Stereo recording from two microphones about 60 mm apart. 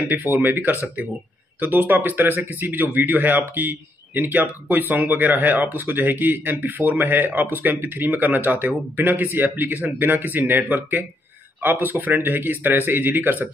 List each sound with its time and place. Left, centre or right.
0.1 s speech: right